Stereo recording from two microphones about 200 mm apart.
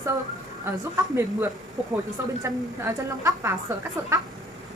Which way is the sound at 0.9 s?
10° right (ahead or behind).